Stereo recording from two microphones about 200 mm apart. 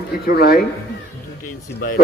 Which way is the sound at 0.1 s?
50° left (ahead or behind).